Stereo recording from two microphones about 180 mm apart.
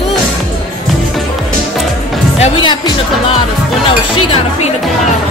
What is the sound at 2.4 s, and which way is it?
Speech, 30° left (ahead or behind).